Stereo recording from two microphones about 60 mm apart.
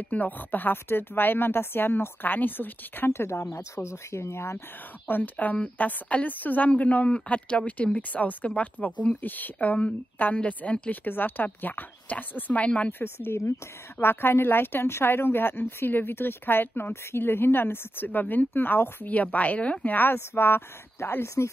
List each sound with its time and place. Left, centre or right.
0.1 s speech: left
5.0 s a woman's voice: left
13.0 s speech: left